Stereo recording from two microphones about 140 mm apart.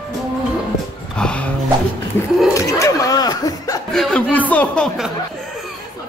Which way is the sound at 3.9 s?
5° left (ahead or behind).